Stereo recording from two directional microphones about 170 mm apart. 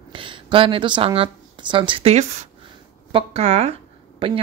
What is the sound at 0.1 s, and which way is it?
Speech, 30° right (ahead or behind).